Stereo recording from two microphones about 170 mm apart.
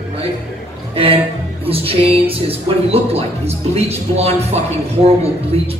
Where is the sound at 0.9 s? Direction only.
35° right (ahead or behind).